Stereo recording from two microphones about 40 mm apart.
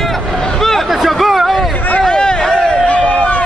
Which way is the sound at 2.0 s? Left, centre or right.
Centre.